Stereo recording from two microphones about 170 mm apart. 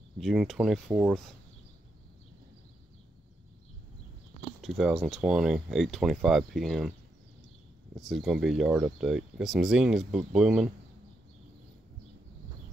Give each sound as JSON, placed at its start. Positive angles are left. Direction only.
{"t": 0.2, "sound": "speech", "side_deg": 0}
{"t": 4.6, "sound": "speech", "side_deg": 0}
{"t": 8.0, "sound": "speech", "side_deg": 0}